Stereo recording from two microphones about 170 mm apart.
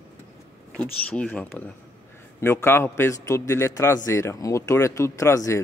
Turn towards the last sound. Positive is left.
turn(degrees=15)  # may be behind; listen again after turning